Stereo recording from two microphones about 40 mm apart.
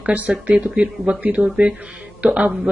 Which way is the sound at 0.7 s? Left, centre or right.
Right.